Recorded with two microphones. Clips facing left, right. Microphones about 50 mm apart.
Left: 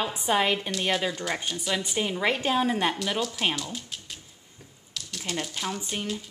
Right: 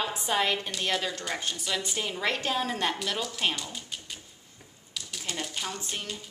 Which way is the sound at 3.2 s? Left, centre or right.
Centre.